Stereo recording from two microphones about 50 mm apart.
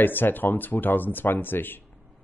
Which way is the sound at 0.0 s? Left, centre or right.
Left.